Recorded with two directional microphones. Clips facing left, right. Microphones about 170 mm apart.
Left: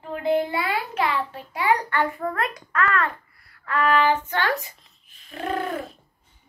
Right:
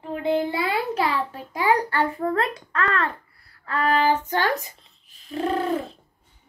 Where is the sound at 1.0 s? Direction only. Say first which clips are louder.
Even; 40° right (ahead or behind).